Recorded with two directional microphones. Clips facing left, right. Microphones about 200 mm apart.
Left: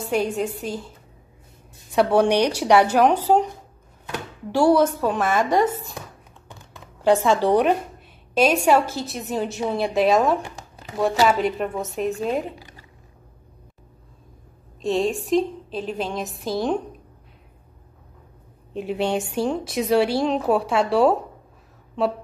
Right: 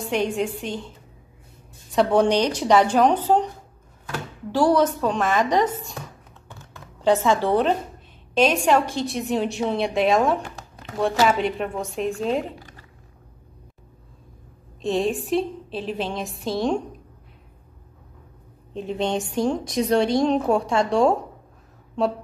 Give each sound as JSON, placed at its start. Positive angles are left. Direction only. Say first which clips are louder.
{"t": 0.6, "sound": "a woman's voice", "louder": "left 1 dB", "side_deg": 5}
{"t": 6.5, "sound": "a sound", "louder": "even", "side_deg": 15}
{"t": 8.4, "sound": "a woman's voice", "louder": "left 1 dB", "side_deg": 10}
{"t": 14.8, "sound": "a woman's voice", "louder": "left 1 dB", "side_deg": 0}
{"t": 18.7, "sound": "a woman's voice", "louder": "left 1 dB", "side_deg": 10}